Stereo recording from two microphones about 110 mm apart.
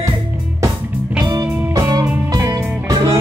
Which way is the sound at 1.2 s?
35° right (ahead or behind).